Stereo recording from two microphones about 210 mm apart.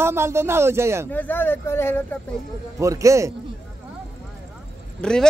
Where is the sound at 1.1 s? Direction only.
10° left (ahead or behind).